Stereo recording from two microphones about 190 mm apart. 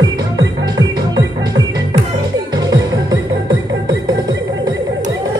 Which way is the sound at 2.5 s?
20° right (ahead or behind).